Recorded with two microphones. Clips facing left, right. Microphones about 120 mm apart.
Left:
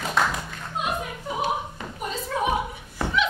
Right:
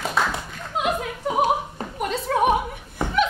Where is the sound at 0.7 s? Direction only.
90° right.